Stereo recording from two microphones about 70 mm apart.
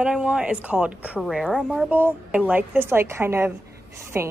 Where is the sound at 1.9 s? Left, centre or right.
Right.